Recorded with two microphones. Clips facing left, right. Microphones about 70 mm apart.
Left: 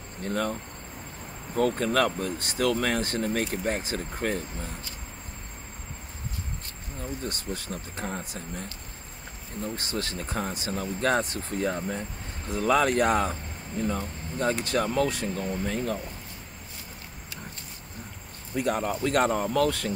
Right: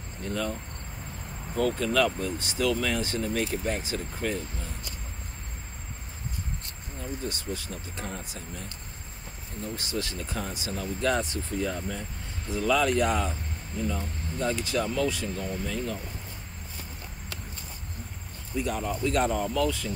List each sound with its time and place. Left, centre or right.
0.2 s speech: left
7.0 s speech: left
18.5 s speech: left